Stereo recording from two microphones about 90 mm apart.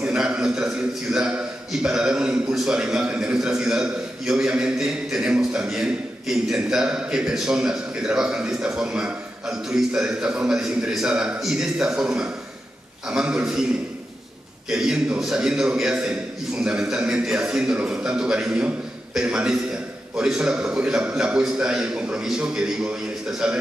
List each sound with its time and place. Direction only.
0.0 s a man's voice: 10° right (ahead or behind)
14.7 s a man's voice: 5° right (ahead or behind)